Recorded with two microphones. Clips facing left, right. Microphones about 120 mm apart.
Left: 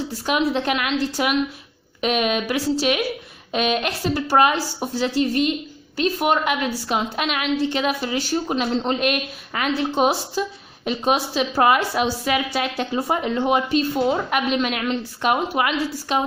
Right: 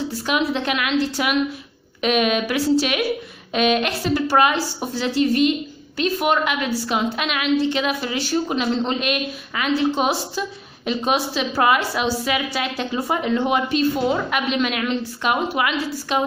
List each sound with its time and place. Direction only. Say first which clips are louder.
0.3 s a woman's voice: left 1 dB; 40° left (ahead or behind)